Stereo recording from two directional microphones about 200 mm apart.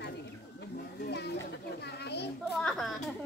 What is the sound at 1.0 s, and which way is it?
Children playing, 55° left (ahead or behind).